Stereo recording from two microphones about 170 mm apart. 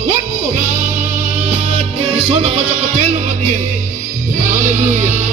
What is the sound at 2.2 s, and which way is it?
Music, 40° right (ahead or behind).